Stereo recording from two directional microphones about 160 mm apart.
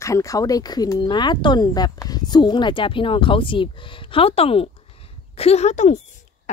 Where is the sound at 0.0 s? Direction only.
20° left (ahead or behind).